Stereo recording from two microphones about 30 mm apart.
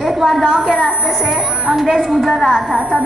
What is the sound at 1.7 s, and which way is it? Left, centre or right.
Speech, centre.